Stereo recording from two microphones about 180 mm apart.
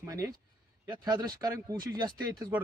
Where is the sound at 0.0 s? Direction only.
15° right (ahead or behind).